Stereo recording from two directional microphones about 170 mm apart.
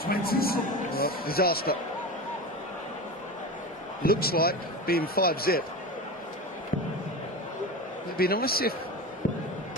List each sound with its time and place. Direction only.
0.0 s speech: 60° left (ahead or behind)
4.0 s a man's voice: 60° left (ahead or behind)
8.2 s a man's voice: 60° left (ahead or behind)